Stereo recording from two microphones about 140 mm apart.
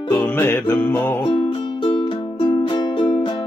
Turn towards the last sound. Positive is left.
turn(degrees=35)  # may be behind; listen again after turning